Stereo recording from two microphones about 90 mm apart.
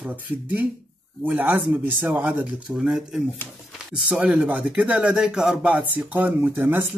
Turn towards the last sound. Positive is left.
turn(degrees=-20)  # may be behind; listen again after turning